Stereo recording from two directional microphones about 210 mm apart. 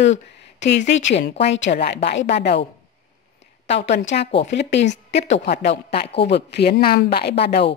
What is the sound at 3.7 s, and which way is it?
A woman's voice, 55° left (ahead or behind).